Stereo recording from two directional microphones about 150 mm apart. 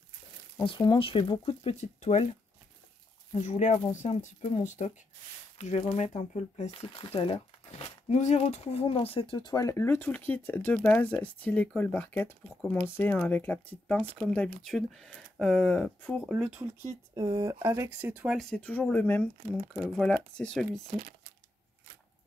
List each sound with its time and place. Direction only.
0.7 s speech: 30° left (ahead or behind); by 2.2 s 50° left (ahead or behind)
3.3 s speech: 50° left (ahead or behind)
7.2 s crumpling: 35° left (ahead or behind)
8.2 s speech: 50° left (ahead or behind); by 16.2 s 10° left (ahead or behind)
16.2 s speech: 5° right (ahead or behind)
17.1 s speech: 30° right (ahead or behind); by 18.5 s 5° right (ahead or behind)
18.5 s speech: 10° left (ahead or behind)
19.5 s speech: centre (ahead or behind)